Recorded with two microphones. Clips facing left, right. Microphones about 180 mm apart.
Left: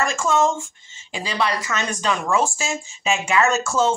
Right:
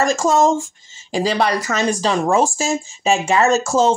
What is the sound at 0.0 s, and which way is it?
Speech, 40° right (ahead or behind).